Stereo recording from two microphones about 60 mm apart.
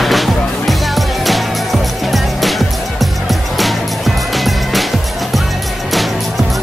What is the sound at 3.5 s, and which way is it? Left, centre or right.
Music, centre.